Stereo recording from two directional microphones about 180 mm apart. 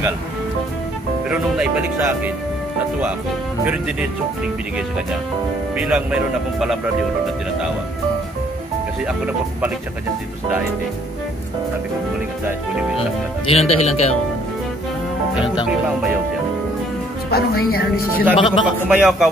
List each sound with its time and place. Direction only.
1.3 s speech: 5° right (ahead or behind)
3.6 s speech: 5° right (ahead or behind)
5.8 s speech: 5° right (ahead or behind)
9.0 s speech: 5° right (ahead or behind)
13.5 s speech: 35° left (ahead or behind)
17.3 s a woman's voice: 60° left (ahead or behind)
18.3 s speech: 30° left (ahead or behind)
18.9 s speech: 5° right (ahead or behind)